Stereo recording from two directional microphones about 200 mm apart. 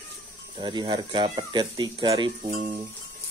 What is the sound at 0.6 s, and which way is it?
Speech, 20° right (ahead or behind).